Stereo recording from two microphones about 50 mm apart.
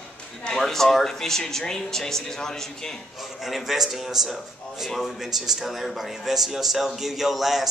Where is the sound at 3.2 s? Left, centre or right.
Centre.